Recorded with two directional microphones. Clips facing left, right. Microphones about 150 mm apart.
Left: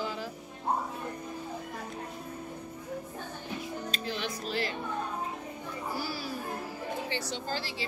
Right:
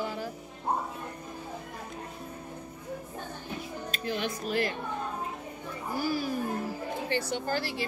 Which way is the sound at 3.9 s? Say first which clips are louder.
Right 6 dB; 50° right (ahead or behind).